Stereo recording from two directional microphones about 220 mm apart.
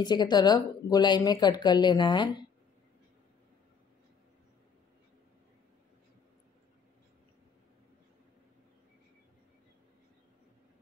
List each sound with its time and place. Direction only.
0.0 s a woman's voice: 20° left (ahead or behind)